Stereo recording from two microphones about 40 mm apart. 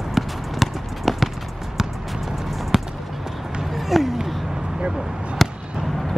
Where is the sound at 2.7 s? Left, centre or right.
Centre.